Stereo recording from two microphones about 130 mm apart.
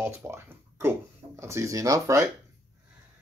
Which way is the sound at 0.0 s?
20° right (ahead or behind).